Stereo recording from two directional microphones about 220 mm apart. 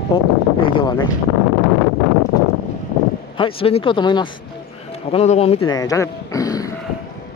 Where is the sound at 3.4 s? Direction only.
25° left (ahead or behind).